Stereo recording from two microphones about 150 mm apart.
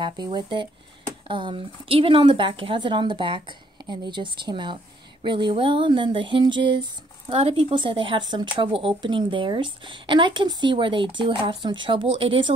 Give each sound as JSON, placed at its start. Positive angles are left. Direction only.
{"t": 0.0, "sound": "speech", "side_deg": -30}